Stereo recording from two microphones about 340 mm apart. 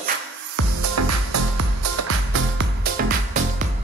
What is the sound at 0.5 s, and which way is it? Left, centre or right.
Music, right.